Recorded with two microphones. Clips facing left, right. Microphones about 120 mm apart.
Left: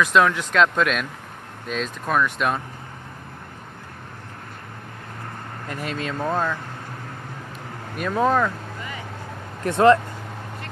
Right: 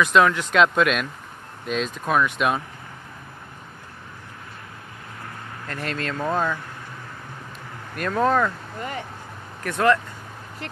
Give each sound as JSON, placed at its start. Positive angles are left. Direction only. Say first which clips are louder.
{"t": 0.0, "sound": "speech", "louder": "even", "side_deg": 0}
{"t": 5.7, "sound": "speech", "louder": "even", "side_deg": 5}
{"t": 7.9, "sound": "speech", "louder": "even", "side_deg": 5}
{"t": 9.6, "sound": "speech", "louder": "left 5 dB", "side_deg": 25}